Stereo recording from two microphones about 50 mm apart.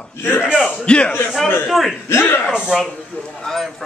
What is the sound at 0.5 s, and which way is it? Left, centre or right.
Speech, centre.